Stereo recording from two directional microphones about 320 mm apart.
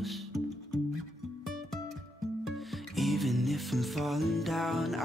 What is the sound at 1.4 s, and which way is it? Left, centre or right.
Music, centre.